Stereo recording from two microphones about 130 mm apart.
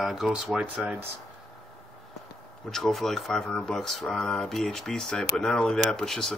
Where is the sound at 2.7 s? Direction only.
5° left (ahead or behind).